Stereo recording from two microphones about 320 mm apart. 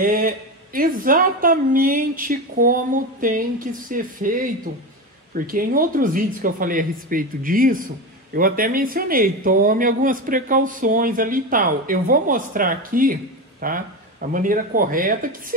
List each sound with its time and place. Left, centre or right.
0.0 s speech: right